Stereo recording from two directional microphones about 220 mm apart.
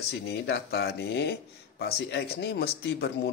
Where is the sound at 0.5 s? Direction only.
50° left (ahead or behind).